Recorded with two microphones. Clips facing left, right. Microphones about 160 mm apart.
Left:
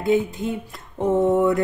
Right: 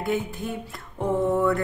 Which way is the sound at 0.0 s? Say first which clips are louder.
Left 6 dB; 20° left (ahead or behind).